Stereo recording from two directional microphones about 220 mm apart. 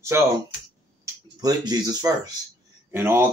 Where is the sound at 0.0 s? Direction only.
10° right (ahead or behind).